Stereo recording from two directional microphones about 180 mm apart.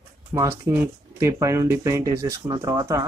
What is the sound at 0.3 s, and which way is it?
Speech, 15° right (ahead or behind).